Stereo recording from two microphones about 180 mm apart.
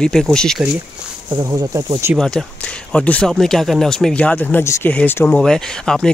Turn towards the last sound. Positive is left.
turn(degrees=5)  # may be behind; listen again after turning